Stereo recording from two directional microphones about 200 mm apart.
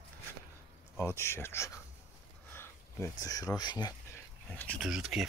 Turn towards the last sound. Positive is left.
turn(degrees=0)  # may be behind; listen again after turning